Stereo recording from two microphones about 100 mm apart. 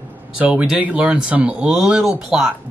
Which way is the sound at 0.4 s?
10° right (ahead or behind).